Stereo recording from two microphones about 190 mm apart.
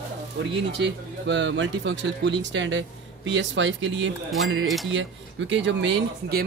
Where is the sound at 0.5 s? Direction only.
70° right (ahead or behind).